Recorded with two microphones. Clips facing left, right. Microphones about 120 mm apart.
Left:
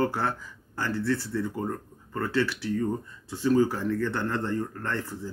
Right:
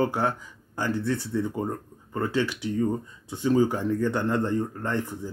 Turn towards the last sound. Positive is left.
turn(degrees=-15)  # may be behind; listen again after turning